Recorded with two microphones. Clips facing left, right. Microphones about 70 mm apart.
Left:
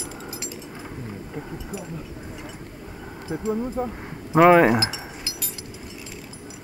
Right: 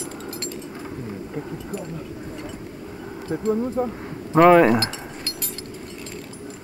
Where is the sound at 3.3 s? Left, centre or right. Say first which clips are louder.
Right 3 dB; centre.